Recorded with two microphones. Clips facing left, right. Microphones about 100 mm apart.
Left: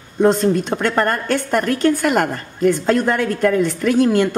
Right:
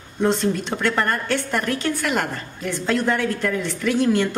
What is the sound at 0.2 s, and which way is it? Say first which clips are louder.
A woman's voice: left 6 dB; 45° left (ahead or behind).